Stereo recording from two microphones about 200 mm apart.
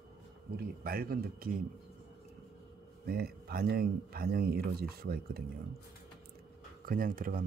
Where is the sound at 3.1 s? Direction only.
50° right (ahead or behind).